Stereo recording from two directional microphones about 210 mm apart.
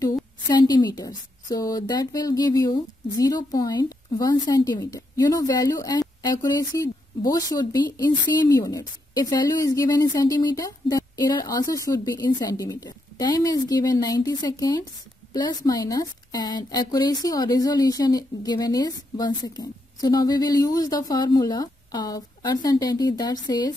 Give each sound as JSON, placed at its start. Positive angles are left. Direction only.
{"t": 0.5, "sound": "a woman's voice", "side_deg": 20}